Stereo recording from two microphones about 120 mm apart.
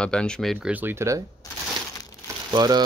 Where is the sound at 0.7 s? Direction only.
15° right (ahead or behind).